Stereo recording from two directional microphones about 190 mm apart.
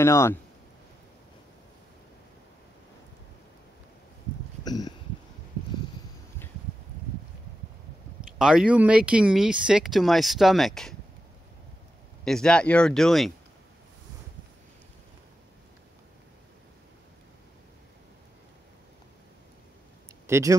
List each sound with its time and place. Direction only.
0.0 s speech: 15° left (ahead or behind)
4.6 s a sound: 20° left (ahead or behind)
8.4 s speech: 5° right (ahead or behind)
12.3 s speech: 5° left (ahead or behind)
20.2 s speech: 15° right (ahead or behind)